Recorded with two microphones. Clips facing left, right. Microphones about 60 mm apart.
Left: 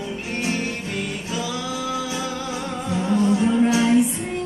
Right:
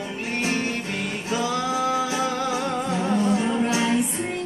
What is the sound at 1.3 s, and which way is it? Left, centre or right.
Music, right.